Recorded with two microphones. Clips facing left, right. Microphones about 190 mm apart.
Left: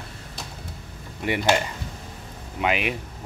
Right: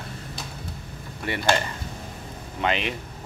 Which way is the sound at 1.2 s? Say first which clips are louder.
Left 2 dB; 15° left (ahead or behind).